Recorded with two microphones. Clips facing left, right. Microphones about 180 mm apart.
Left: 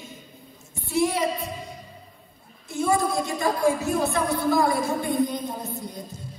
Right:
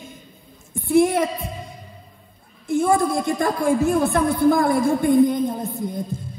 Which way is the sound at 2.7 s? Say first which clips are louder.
Right 5 dB; 55° right (ahead or behind).